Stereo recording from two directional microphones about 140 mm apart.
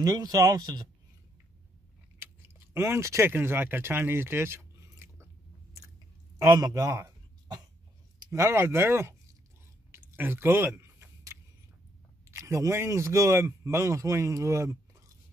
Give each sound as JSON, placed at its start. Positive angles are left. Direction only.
{"t": 0.0, "sound": "speech", "side_deg": -25}
{"t": 2.1, "sound": "speech", "side_deg": -15}
{"t": 6.3, "sound": "a sound", "side_deg": -20}
{"t": 8.2, "sound": "speech", "side_deg": -20}
{"t": 9.8, "sound": "chewing", "side_deg": -15}
{"t": 12.3, "sound": "speech", "side_deg": -20}